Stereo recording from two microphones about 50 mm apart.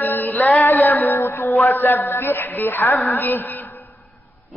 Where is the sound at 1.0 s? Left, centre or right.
Left.